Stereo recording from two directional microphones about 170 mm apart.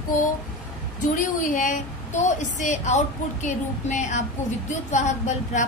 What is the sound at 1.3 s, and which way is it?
A woman's voice, 50° left (ahead or behind).